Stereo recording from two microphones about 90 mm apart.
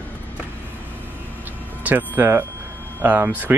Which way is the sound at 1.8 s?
20° right (ahead or behind).